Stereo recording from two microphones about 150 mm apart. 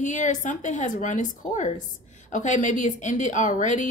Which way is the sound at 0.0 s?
55° left (ahead or behind).